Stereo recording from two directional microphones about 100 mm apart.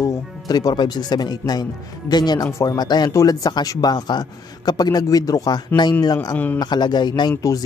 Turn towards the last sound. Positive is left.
turn(degrees=40)  # may be behind; listen again after turning